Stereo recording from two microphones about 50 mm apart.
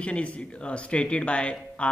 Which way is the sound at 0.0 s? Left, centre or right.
Left.